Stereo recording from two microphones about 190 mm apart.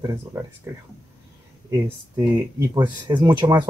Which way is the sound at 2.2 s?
20° right (ahead or behind).